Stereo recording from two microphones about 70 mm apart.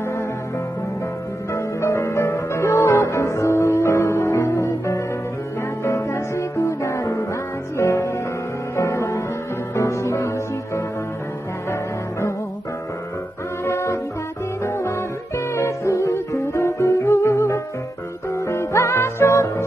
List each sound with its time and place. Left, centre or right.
1.5 s music: left
13.7 s music: left